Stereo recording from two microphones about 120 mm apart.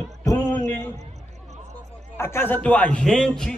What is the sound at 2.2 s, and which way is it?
A man's voice, 20° left (ahead or behind).